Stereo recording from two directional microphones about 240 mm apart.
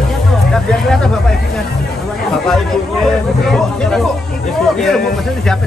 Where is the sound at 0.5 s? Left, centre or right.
Centre.